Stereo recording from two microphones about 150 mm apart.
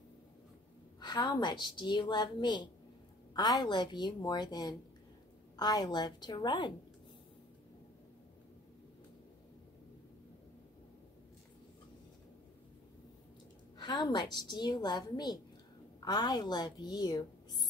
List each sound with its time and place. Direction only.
0.9 s a woman's voice: 30° left (ahead or behind)
13.7 s a woman's voice: 30° left (ahead or behind)